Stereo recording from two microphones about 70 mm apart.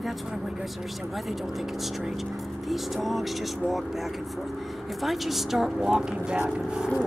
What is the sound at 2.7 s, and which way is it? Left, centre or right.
Speech, centre.